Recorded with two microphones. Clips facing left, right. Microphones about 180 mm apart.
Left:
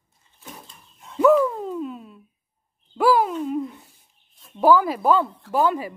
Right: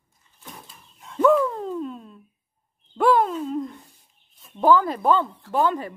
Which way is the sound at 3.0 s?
5° left (ahead or behind).